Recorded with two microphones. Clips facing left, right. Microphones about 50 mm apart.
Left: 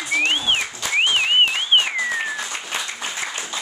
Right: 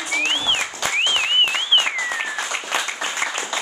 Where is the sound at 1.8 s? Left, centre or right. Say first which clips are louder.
Even; centre.